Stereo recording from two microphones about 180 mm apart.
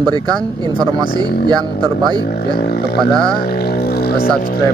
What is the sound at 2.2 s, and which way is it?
Speech, 60° left (ahead or behind).